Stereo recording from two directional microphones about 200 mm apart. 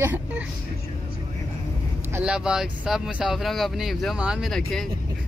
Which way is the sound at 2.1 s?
5° right (ahead or behind).